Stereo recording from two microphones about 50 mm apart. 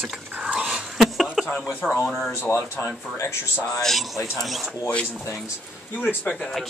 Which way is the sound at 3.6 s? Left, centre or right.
Centre.